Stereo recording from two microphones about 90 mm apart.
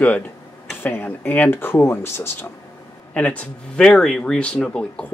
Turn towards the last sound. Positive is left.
turn(degrees=10)  # may be behind; listen again after turning